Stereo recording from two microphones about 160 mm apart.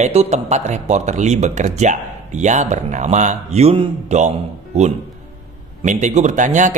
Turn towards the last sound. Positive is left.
turn(degrees=-50)  # may be behind; listen again after turning